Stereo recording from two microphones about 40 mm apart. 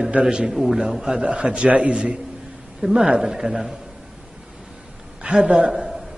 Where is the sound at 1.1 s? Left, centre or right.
Right.